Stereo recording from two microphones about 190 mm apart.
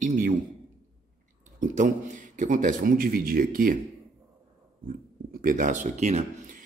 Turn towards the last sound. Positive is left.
turn(degrees=-35)  # may be behind; listen again after turning